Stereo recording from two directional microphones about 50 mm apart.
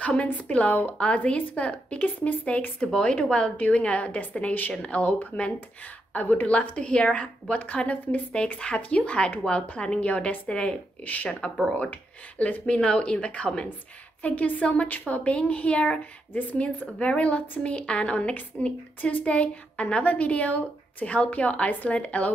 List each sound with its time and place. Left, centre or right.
0.0 s a woman's voice: left
2.9 s a woman's voice: centre
11.7 s a woman's voice: left
14.2 s a woman's voice: left